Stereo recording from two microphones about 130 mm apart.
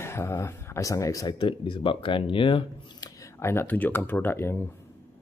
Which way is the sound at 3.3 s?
20° left (ahead or behind).